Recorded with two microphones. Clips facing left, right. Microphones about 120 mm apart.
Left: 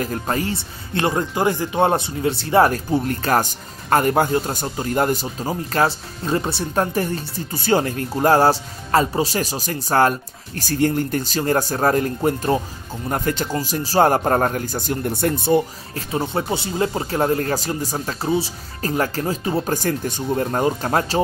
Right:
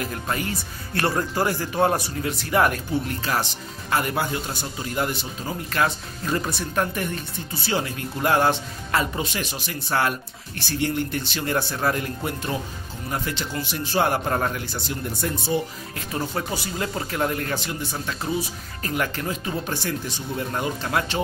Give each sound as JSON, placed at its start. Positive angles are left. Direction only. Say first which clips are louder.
{"t": 0.0, "sound": "speech", "louder": "left 5 dB", "side_deg": 35}
{"t": 15.9, "sound": "speech", "louder": "left 4 dB", "side_deg": 30}